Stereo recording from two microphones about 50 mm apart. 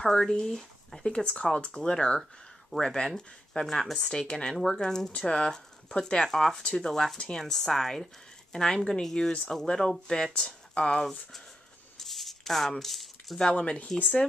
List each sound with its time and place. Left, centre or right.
0.0 s speech: centre
3.8 s speech: centre
4.1 s speech: centre
12.0 s a sound: centre
13.4 s speech: centre